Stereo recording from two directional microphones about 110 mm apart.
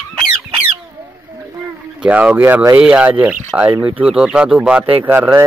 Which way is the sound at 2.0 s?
15° right (ahead or behind).